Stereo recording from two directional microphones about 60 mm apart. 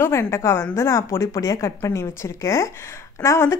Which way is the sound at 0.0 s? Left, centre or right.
Left.